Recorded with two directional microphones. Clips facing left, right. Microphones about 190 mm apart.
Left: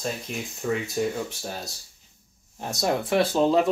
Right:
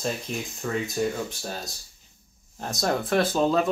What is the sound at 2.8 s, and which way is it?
Speech, 10° left (ahead or behind).